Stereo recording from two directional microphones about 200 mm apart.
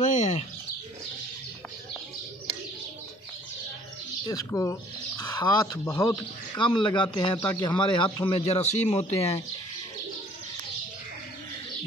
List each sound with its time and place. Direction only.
0.0 s bird: 35° left (ahead or behind)
4.3 s a man's voice: 15° left (ahead or behind); by 9.4 s 30° left (ahead or behind)